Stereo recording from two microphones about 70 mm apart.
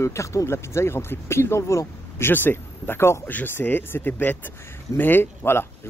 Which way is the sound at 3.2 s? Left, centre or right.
Left.